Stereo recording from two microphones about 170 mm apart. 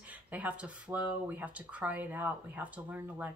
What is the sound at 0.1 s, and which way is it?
Speech, 10° right (ahead or behind).